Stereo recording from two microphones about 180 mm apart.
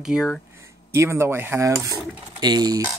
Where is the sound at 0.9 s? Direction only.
15° right (ahead or behind).